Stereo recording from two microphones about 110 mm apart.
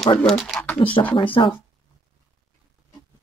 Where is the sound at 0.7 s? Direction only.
55° left (ahead or behind).